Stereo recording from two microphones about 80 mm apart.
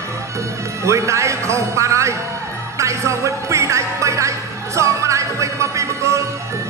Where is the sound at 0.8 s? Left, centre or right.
Right.